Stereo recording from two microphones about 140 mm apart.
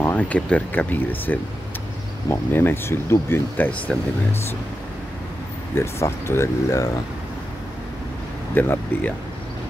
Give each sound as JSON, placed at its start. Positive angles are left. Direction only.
{"t": 0.0, "sound": "speech", "side_deg": 10}
{"t": 5.8, "sound": "speech", "side_deg": 20}
{"t": 8.5, "sound": "speech", "side_deg": 15}